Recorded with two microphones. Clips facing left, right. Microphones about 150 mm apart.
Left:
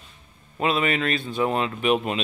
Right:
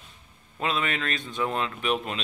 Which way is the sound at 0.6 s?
10° left (ahead or behind).